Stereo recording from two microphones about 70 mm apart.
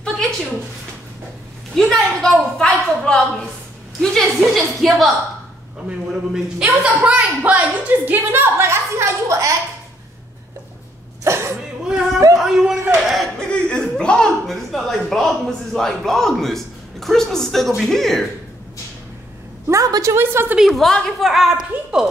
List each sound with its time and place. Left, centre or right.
1.8 s a woman's voice: centre
5.9 s a woman's voice: centre; by 9.5 s right
11.2 s cough: right
11.9 s a sound: centre
12.9 s battle cry: centre
13.4 s speech: centre
19.7 s a woman's voice: right
20.2 s a woman's voice: right
20.5 s speech: centre